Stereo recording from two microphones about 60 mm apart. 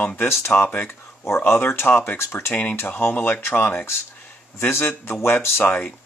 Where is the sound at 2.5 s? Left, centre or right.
Left.